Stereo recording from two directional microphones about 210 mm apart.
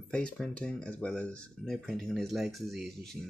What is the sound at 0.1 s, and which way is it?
Speech, 5° left (ahead or behind).